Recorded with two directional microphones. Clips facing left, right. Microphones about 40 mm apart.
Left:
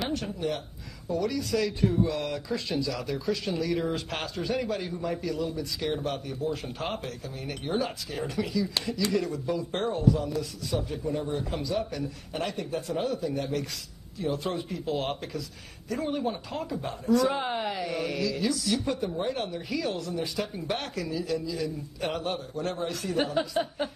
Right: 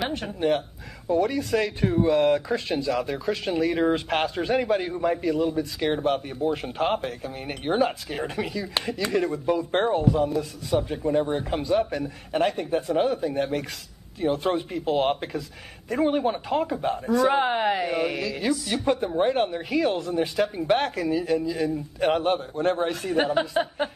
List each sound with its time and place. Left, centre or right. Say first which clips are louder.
0.1 s speech: right 6 dB; right